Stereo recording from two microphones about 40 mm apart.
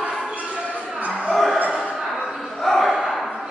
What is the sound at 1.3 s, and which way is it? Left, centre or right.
Music, centre.